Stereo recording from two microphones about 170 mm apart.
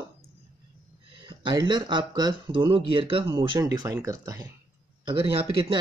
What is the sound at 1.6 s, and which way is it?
Speech, 25° right (ahead or behind).